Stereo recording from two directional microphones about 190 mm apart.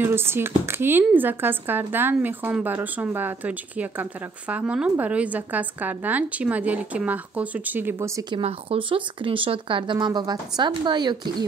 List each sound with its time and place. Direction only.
0.0 s speech: 10° right (ahead or behind)
8.4 s speech: 30° right (ahead or behind)